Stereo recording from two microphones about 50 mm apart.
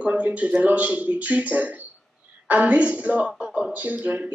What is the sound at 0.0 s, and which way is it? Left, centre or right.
A woman's voice, right.